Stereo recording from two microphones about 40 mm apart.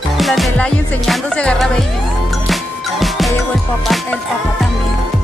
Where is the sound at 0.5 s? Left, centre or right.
Left.